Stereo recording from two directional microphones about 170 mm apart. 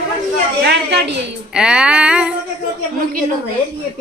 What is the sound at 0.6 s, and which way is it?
Speech, 75° right (ahead or behind).